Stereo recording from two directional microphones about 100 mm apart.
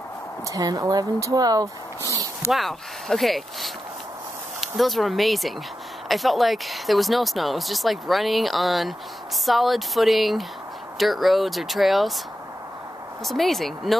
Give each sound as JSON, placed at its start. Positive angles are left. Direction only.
{"t": 0.5, "sound": "speech", "side_deg": -35}
{"t": 2.5, "sound": "speech", "side_deg": 0}
{"t": 13.2, "sound": "speech", "side_deg": 0}